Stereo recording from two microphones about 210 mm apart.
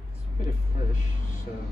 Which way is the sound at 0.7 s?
40° left (ahead or behind).